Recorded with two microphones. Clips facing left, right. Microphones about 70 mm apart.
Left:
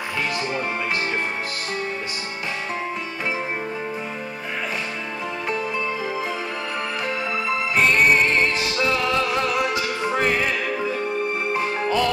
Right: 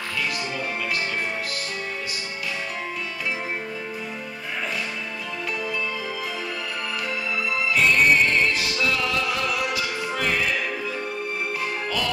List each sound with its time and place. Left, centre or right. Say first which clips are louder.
7.4 s music: left 1 dB; left
11.5 s music: left 5 dB; left